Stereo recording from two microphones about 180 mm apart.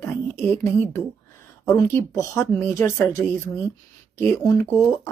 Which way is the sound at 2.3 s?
15° left (ahead or behind).